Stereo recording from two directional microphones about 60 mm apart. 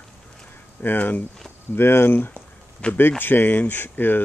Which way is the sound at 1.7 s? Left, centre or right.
Left.